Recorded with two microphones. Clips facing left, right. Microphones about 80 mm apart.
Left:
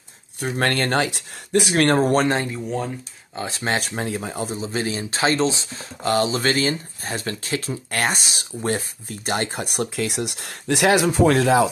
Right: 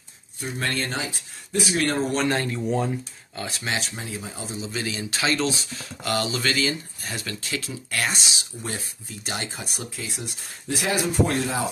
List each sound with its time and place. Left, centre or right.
0.4 s speech: left
2.2 s speech: left
3.6 s speech: left